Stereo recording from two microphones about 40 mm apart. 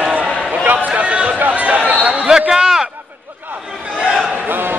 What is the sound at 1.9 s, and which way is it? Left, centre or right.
Basketball bounce, right.